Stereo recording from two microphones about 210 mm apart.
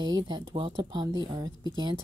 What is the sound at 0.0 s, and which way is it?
A woman's voice, 20° right (ahead or behind).